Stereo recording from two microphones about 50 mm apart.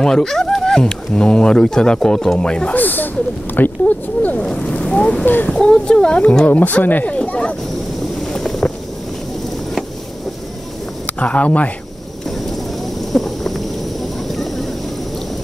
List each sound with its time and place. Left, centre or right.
0.0 s speech: centre
2.7 s speech: left
4.4 s speech: left
5.2 s speech: left
5.6 s speech: centre; by 7.2 s left
7.2 s speech: left
8.2 s boat: centre
11.1 s speech: left
13.1 s a sound: centre
14.2 s vehicle: centre